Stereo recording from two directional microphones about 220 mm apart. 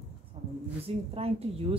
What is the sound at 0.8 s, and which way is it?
Speech, 25° right (ahead or behind).